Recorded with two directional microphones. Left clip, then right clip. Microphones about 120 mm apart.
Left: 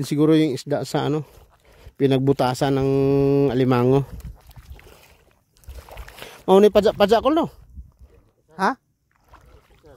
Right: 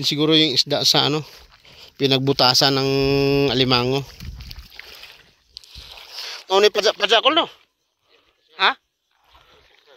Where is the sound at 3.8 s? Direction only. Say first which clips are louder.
Left 4 dB; 90° left.